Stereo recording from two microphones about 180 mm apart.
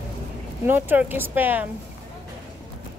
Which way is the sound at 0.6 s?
10° right (ahead or behind).